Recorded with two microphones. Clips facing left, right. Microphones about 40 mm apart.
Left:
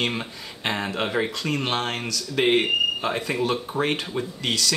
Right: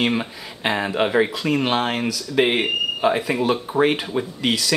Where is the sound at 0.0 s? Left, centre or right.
Centre.